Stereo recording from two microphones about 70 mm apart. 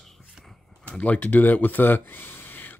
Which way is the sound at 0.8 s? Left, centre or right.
Centre.